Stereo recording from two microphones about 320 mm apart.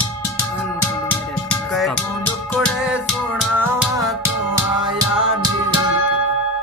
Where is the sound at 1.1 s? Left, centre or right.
Centre.